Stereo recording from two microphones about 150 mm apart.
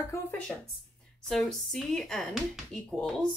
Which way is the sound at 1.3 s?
Centre (ahead or behind).